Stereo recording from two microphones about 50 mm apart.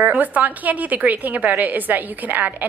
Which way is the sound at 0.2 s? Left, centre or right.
Right.